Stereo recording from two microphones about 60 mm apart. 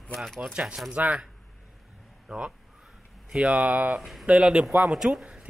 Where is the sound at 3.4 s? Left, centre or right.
Right.